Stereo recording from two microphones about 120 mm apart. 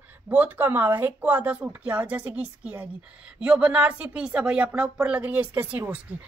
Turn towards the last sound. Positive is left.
turn(degrees=-15)  # may be behind; listen again after turning